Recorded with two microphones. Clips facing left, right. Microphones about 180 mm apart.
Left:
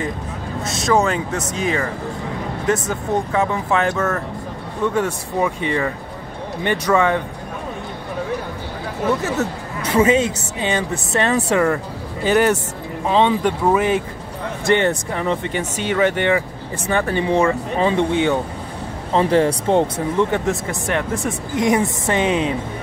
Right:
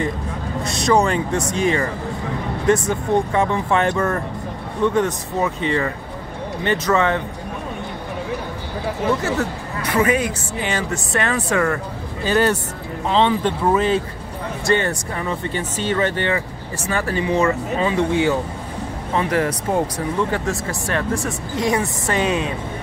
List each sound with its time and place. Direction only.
0.7 s speech: centre (ahead or behind)
2.9 s speech: centre (ahead or behind)
9.9 s speech: 25° left (ahead or behind)